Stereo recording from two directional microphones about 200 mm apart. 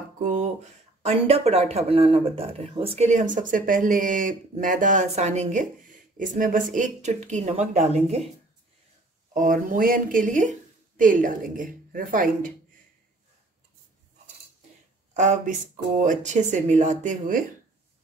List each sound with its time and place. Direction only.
0.2 s a sound: 35° right (ahead or behind)
1.0 s speech: 30° right (ahead or behind)
9.3 s speech: 40° right (ahead or behind)
15.1 s speech: 40° right (ahead or behind)